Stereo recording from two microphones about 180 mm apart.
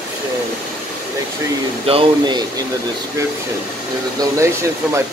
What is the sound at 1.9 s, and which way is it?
Speech, 25° right (ahead or behind).